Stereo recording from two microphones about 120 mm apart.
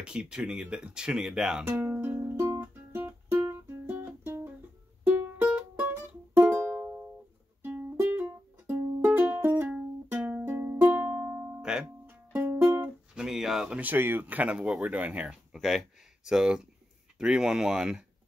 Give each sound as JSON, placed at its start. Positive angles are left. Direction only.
{"t": 0.0, "sound": "speech", "side_deg": -5}
{"t": 1.7, "sound": "music", "side_deg": -15}
{"t": 13.1, "sound": "a man's voice", "side_deg": -5}